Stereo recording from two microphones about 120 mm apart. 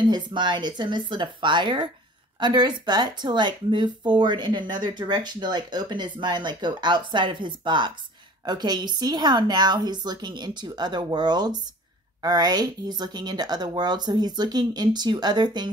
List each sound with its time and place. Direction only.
0.1 s speech: 40° right (ahead or behind)